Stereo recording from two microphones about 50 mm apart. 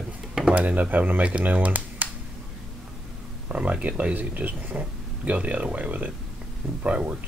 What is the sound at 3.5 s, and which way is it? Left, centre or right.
Speech, right.